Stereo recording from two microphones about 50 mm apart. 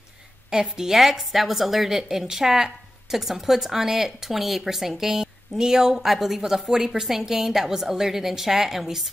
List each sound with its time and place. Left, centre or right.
0.5 s a woman's voice: centre